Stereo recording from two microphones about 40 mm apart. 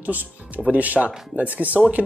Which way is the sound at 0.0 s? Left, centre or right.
Right.